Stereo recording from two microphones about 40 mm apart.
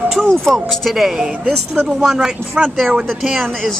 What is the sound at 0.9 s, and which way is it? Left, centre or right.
Speech, centre.